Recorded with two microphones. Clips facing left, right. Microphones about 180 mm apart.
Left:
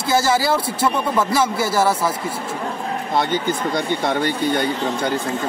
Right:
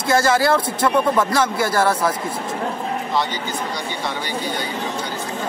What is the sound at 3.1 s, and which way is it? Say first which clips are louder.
Speech: left 6 dB; 55° left (ahead or behind).